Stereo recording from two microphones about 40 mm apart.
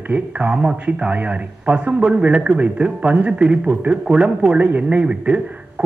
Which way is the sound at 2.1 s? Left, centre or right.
Right.